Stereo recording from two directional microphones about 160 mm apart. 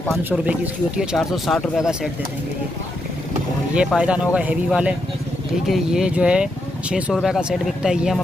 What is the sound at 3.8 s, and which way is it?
Speech, 5° right (ahead or behind).